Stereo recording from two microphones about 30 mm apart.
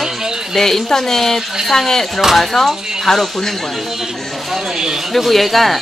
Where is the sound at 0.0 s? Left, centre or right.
Centre.